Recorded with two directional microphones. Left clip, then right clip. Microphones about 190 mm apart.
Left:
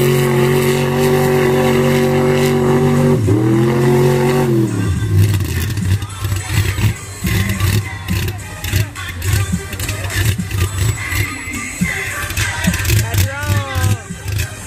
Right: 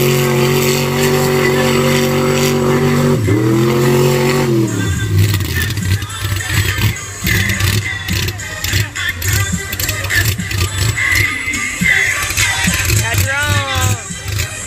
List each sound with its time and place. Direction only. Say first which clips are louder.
0.0 s vehicle: right 1 dB; 5° left (ahead or behind)
7.7 s vehicle: right 5 dB; 5° left (ahead or behind)
11.8 s music: right 9 dB; 50° left (ahead or behind)